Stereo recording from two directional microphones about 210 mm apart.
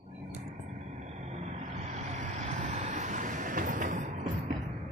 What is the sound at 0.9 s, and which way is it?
Vehicle, 35° right (ahead or behind).